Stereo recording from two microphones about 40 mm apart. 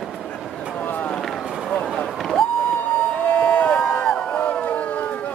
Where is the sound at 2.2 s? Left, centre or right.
Centre.